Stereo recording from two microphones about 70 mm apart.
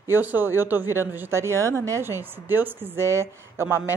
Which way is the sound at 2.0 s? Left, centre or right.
Right.